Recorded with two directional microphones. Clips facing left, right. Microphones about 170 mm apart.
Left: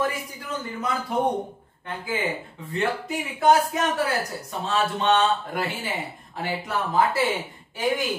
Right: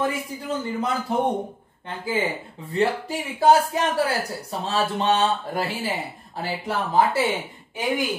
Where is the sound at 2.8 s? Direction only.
30° right (ahead or behind).